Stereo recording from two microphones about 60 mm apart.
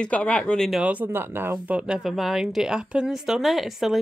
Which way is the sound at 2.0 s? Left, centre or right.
Centre.